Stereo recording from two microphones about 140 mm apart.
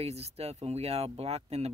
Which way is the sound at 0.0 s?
50° right (ahead or behind).